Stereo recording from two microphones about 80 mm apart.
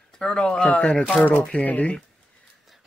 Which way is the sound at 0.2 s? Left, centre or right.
Centre.